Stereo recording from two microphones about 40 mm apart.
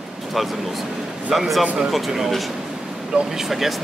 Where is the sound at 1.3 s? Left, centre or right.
Centre.